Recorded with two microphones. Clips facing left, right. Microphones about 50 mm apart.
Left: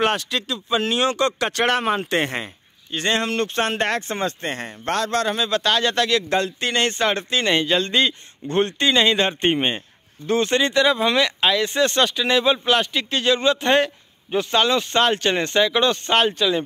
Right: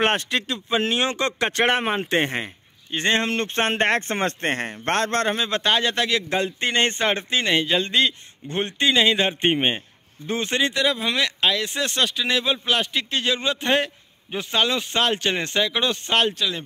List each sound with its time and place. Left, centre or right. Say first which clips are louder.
0.0 s speech: even; right
0.7 s speech: left 3 dB; right
5.3 s speech: left 1 dB; right
6.6 s speech: left 1 dB; right
7.4 s a man's voice: left 2 dB; centre